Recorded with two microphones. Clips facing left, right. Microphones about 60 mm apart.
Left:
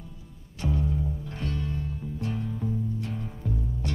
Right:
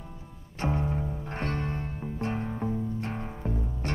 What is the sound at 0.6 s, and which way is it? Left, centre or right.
Music, right.